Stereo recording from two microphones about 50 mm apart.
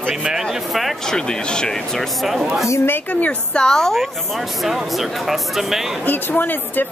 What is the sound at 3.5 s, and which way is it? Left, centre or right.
Speech, centre.